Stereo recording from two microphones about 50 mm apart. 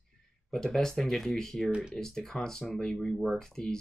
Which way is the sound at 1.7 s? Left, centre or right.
Centre.